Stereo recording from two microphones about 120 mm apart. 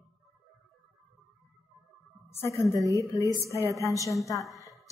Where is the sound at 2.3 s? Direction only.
20° left (ahead or behind).